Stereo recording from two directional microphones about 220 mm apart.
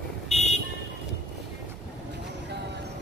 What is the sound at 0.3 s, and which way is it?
Vehicle, 30° left (ahead or behind).